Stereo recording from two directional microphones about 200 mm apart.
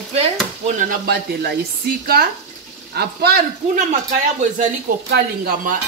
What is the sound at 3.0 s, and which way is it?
Speech, 50° right (ahead or behind).